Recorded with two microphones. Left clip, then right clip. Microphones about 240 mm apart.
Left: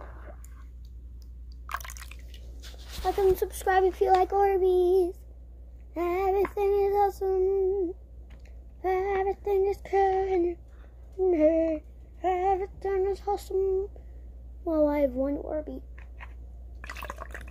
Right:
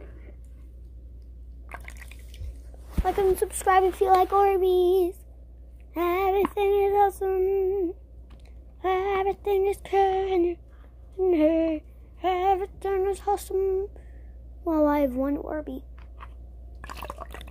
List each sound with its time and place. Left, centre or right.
3.3 s a child's voice: centre
5.9 s female singing: right
8.8 s female singing: right
16.8 s a sound: centre